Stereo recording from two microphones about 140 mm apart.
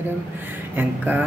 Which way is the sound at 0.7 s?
10° right (ahead or behind).